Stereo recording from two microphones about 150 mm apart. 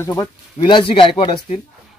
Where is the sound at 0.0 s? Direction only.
20° left (ahead or behind).